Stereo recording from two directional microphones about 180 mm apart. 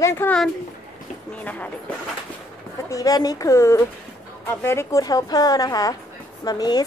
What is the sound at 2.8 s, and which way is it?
A woman's voice, 20° left (ahead or behind).